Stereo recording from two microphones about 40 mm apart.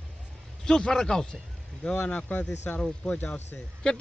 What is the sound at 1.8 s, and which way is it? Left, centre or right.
A man's voice, left.